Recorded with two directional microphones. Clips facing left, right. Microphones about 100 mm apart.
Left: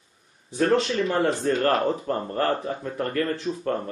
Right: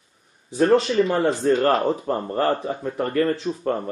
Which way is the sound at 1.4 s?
20° right (ahead or behind).